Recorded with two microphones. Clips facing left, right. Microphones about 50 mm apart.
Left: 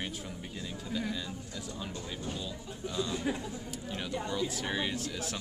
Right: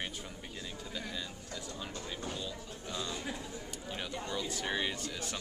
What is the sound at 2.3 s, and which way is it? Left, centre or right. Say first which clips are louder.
A woman's voice: left 1 dB; centre.